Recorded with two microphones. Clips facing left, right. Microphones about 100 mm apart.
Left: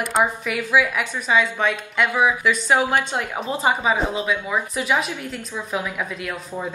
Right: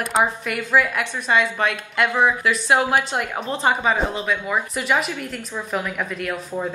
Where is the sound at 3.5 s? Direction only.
5° left (ahead or behind).